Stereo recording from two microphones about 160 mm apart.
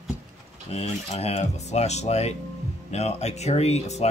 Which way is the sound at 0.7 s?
40° left (ahead or behind).